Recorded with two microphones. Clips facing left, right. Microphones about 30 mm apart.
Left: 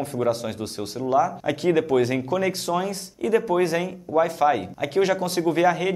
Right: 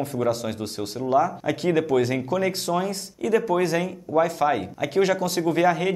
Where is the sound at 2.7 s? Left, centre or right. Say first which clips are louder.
Even; centre.